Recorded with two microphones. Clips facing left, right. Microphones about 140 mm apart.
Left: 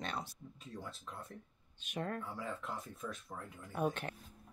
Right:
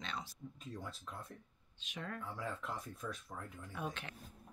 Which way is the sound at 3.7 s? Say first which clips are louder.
Left 8 dB; 50° left (ahead or behind).